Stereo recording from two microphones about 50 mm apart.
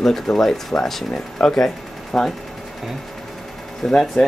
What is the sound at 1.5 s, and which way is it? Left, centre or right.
Speech, centre.